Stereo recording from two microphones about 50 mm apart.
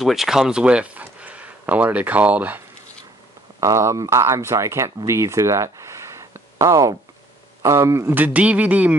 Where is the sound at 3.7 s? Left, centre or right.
Right.